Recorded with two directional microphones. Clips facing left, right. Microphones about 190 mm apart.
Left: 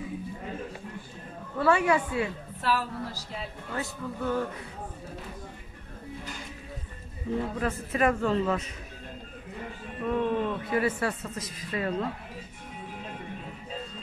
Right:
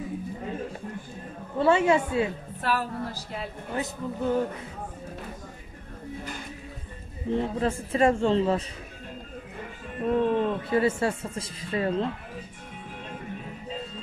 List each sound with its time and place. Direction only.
1.6 s speech: 25° right (ahead or behind)
2.6 s speech: 55° right (ahead or behind)
3.7 s speech: 20° right (ahead or behind)
7.3 s speech: 30° right (ahead or behind)
10.0 s speech: 35° right (ahead or behind)